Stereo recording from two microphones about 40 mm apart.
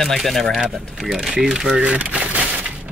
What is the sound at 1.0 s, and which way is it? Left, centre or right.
Speech, centre.